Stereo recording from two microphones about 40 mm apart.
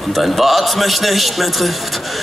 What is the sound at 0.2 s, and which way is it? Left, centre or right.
Music, centre.